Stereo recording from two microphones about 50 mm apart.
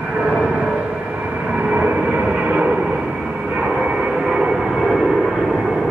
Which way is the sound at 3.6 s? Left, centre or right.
Centre.